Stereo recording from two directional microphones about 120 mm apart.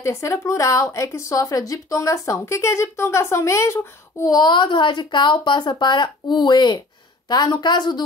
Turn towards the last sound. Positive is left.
turn(degrees=40)  # may be behind; listen again after turning